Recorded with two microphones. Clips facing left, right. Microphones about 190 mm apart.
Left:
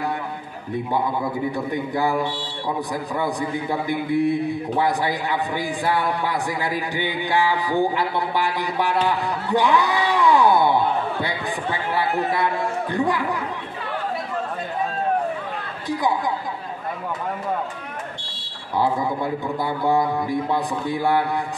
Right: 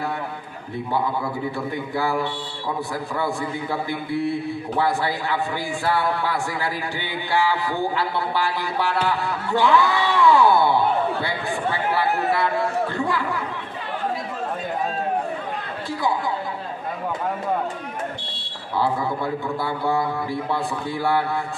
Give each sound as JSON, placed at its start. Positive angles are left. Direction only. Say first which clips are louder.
{"t": 0.9, "sound": "a man's voice", "louder": "even", "side_deg": 15}
{"t": 12.9, "sound": "chatter", "louder": "left 2 dB", "side_deg": 20}
{"t": 18.8, "sound": "a man's voice", "louder": "left 1 dB", "side_deg": 15}